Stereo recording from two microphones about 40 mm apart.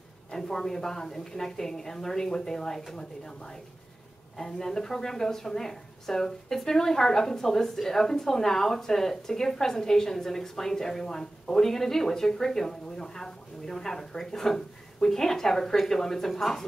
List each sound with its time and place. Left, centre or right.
0.3 s a woman's voice: centre